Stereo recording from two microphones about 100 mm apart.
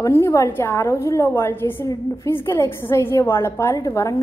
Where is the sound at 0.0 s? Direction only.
30° left (ahead or behind).